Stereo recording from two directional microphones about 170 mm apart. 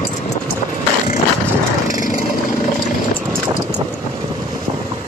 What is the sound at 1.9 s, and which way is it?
Vehicle, 50° left (ahead or behind).